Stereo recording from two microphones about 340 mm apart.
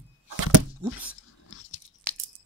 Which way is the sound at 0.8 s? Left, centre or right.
Centre.